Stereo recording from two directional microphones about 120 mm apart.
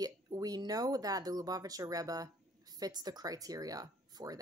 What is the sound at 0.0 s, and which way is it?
Speech, 30° right (ahead or behind).